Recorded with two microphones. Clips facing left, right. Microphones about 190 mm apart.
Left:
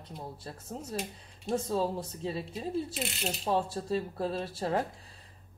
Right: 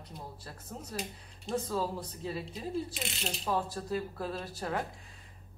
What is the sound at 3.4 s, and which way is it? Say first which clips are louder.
Speech: left 3 dB; 30° left (ahead or behind).